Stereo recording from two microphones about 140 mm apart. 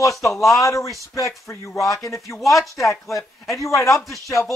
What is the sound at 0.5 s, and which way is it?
Speech, 20° left (ahead or behind).